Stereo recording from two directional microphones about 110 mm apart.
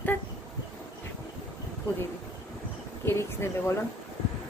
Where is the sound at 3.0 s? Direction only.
25° left (ahead or behind).